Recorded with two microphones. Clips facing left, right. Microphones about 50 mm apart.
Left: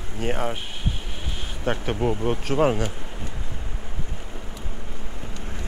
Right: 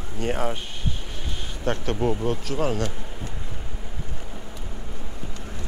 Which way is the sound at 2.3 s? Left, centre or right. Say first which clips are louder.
Left 4 dB; left.